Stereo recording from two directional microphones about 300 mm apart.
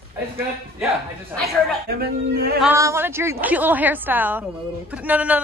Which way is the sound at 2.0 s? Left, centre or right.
Right.